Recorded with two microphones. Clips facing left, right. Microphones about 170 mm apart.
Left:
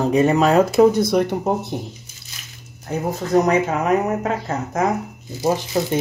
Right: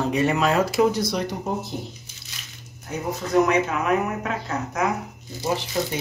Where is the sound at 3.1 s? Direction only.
45° left (ahead or behind).